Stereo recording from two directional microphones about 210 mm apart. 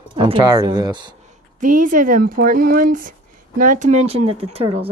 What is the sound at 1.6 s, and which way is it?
Speech, 40° right (ahead or behind).